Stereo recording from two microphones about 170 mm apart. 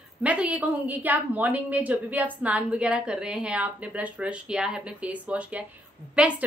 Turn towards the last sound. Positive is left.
turn(degrees=-10)  # may be behind; listen again after turning